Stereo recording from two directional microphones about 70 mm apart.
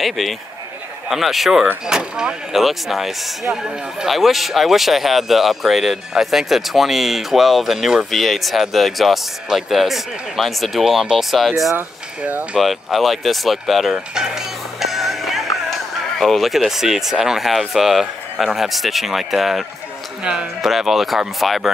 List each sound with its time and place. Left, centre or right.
0.0 s speech: centre
12.2 s speech: right
12.5 s speech: centre
13.9 s music: centre
16.2 s speech: centre